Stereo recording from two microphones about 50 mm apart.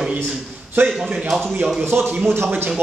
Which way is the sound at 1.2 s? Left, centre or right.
Centre.